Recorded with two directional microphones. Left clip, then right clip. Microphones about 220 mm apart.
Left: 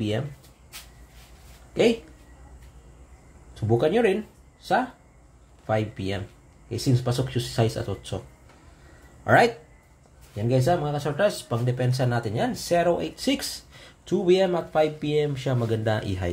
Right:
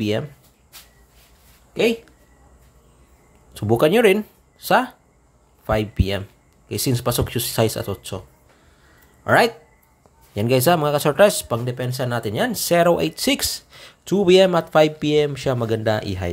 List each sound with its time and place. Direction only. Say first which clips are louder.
1.7 s speech: right 2 dB; 10° right (ahead or behind)
3.5 s speech: right 6 dB; 35° right (ahead or behind)
9.2 s speech: right 2 dB; 20° right (ahead or behind)
10.3 s speech: right 6 dB; 35° right (ahead or behind); by 16.3 s 15° right (ahead or behind)